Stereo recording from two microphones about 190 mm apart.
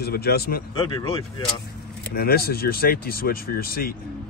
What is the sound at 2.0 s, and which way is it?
Speech, 55° left (ahead or behind).